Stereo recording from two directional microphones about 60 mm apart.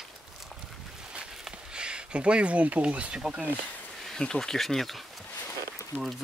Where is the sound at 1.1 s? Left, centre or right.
Centre.